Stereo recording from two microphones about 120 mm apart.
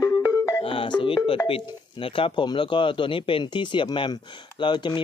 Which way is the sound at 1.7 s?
45° left (ahead or behind).